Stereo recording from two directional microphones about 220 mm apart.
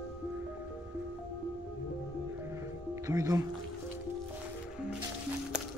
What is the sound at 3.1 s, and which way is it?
Speech, 15° right (ahead or behind).